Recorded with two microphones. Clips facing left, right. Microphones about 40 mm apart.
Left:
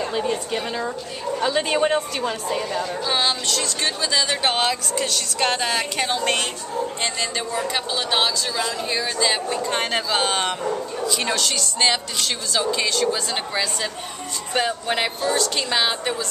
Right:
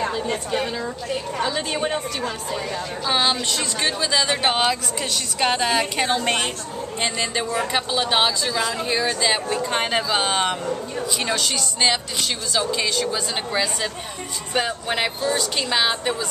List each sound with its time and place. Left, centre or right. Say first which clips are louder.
0.7 s a woman's voice: even; centre
3.1 s a woman's voice: right 3 dB; centre